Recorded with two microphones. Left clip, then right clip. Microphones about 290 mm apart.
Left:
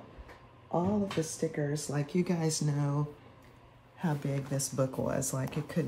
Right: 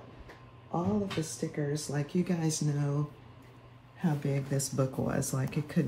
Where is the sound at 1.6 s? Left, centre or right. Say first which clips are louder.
Even; left.